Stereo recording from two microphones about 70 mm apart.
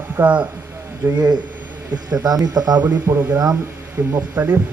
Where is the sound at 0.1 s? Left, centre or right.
Right.